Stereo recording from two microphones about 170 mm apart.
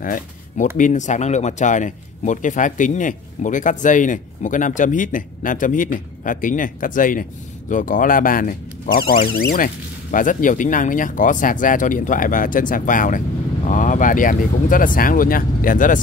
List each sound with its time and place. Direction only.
0.0 s speech: 50° left (ahead or behind)
10.1 s speech: 50° left (ahead or behind)